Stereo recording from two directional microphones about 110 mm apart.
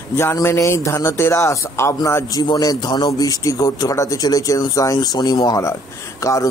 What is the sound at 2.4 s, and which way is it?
A man's voice, 40° left (ahead or behind).